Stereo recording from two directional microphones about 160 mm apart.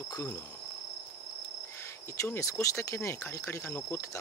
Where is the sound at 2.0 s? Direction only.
15° left (ahead or behind).